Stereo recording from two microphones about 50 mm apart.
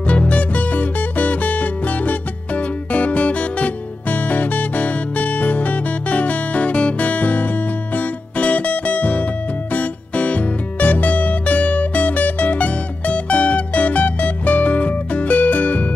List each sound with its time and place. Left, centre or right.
0.0 s music: left